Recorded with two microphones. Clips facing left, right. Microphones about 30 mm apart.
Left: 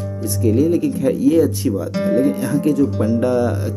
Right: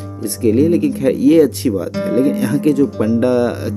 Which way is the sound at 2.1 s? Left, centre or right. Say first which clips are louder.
Right 2 dB; right.